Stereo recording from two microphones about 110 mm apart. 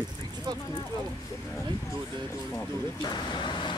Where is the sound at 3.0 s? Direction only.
40° left (ahead or behind).